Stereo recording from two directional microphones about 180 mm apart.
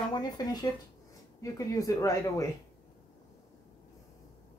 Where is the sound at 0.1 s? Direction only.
25° left (ahead or behind).